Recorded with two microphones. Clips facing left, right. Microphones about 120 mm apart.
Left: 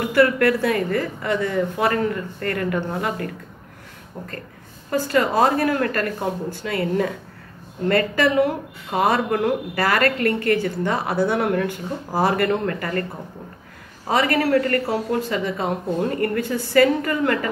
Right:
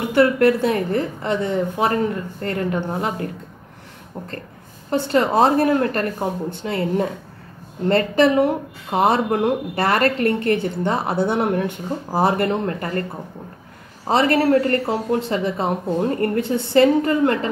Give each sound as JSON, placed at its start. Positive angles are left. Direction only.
{"t": 0.1, "sound": "a woman's voice", "side_deg": -25}
{"t": 4.9, "sound": "a woman's voice", "side_deg": -25}
{"t": 14.0, "sound": "a woman's voice", "side_deg": -30}